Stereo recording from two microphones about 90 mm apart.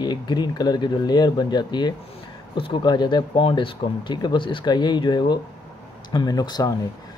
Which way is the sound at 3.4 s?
70° left (ahead or behind).